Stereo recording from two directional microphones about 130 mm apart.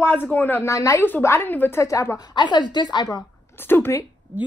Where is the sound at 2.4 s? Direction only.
35° left (ahead or behind).